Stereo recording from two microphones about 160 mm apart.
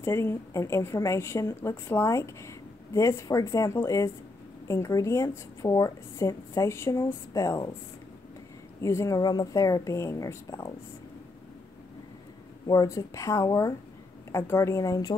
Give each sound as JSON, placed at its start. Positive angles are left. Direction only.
{"t": 0.0, "sound": "speech", "side_deg": 15}
{"t": 8.8, "sound": "speech", "side_deg": 20}
{"t": 12.6, "sound": "speech", "side_deg": 20}